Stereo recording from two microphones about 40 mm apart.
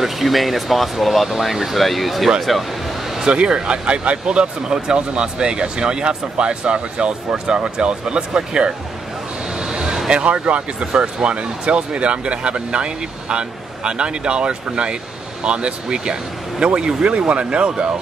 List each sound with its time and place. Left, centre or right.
0.0 s speech: centre
3.3 s speech: right
9.6 s vehicle: centre
10.2 s speech: right